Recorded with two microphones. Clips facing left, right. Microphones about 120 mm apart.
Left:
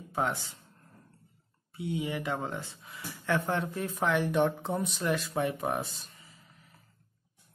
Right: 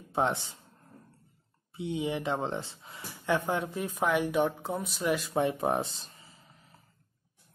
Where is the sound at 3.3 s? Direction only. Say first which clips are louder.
Right 1 dB; 15° right (ahead or behind).